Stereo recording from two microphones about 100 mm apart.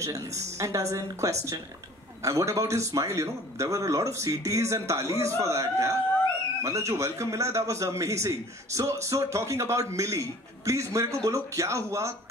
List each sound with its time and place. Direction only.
0.0 s a man's voice: 35° right (ahead or behind)